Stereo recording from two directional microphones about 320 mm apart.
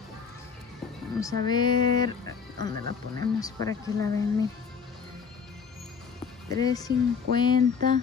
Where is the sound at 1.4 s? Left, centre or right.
Centre.